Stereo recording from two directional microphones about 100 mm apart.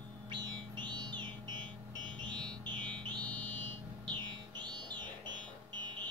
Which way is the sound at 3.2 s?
15° left (ahead or behind).